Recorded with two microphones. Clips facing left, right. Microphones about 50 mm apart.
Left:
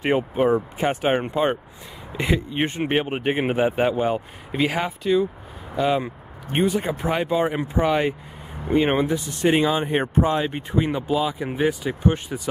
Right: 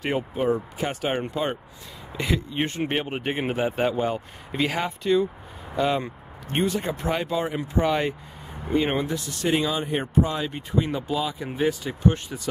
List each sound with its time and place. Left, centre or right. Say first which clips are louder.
0.0 s speech: left 5 dB; left
7.4 s speech: left 5 dB; left
7.7 s speech: even; centre